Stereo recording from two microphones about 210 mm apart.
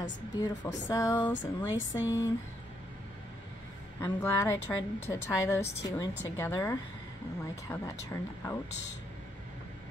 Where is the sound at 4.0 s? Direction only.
10° left (ahead or behind).